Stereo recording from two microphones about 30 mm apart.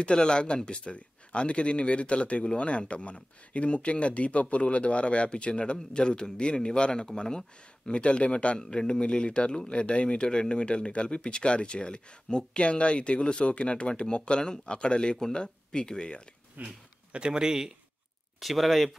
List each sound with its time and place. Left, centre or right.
0.0 s speech: left
8.5 s speech: left
16.6 s a sound: right
17.3 s a man's voice: right
18.4 s speech: centre